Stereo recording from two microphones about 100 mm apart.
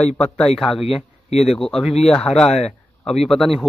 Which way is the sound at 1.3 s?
90° left.